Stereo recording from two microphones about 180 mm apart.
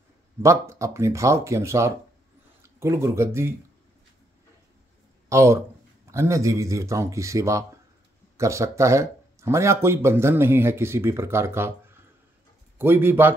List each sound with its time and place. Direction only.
0.4 s speech: 15° right (ahead or behind)
5.3 s speech: 15° right (ahead or behind)